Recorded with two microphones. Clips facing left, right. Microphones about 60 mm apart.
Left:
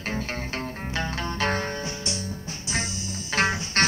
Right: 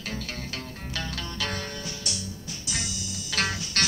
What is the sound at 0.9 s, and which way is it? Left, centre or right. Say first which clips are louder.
Music: left 5 dB; left.